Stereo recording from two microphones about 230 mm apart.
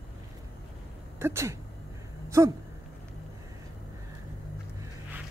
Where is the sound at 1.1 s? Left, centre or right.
Centre.